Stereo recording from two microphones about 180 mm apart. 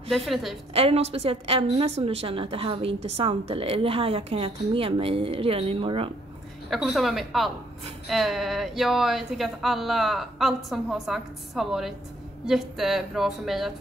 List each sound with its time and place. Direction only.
0.3 s speech: centre (ahead or behind)
0.7 s a woman's voice: 35° right (ahead or behind)
6.7 s speech: centre (ahead or behind)